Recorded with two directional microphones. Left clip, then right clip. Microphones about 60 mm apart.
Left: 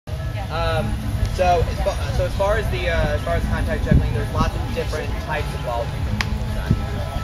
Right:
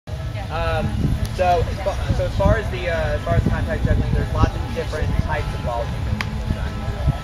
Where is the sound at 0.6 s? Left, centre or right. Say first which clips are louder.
Even; left.